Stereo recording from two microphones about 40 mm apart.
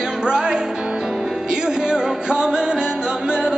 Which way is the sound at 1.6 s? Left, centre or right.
Right.